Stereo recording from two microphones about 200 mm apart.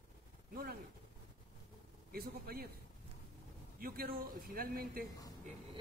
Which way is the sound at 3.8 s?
45° right (ahead or behind).